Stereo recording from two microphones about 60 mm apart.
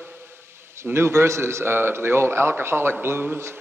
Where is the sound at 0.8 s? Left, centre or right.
Right.